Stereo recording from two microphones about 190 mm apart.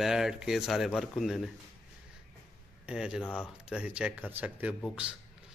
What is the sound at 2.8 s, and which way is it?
Speech, 5° right (ahead or behind).